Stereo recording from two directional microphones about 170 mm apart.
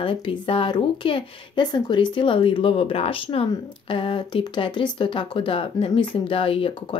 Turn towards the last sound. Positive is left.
turn(degrees=35)  # may be behind; listen again after turning